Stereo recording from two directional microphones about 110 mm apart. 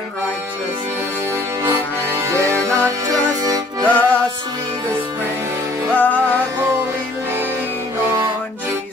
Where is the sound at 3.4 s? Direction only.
35° right (ahead or behind).